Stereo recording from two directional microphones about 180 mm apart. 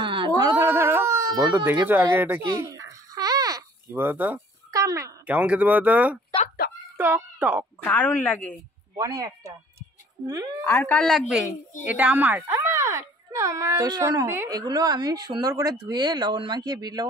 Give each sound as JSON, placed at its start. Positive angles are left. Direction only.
{"t": 0.0, "sound": "a sound", "side_deg": -25}
{"t": 0.7, "sound": "baby cry", "side_deg": -15}
{"t": 1.9, "sound": "babbling", "side_deg": -10}
{"t": 7.0, "sound": "a child's voice", "side_deg": -10}
{"t": 7.8, "sound": "speech", "side_deg": 5}
{"t": 8.9, "sound": "speech", "side_deg": -20}
{"t": 10.6, "sound": "a woman's voice", "side_deg": 10}